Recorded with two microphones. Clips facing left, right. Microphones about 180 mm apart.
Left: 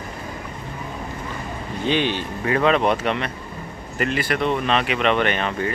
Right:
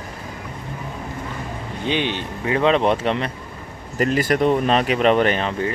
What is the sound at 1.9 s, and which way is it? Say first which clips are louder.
Speech: left 1 dB; 20° right (ahead or behind).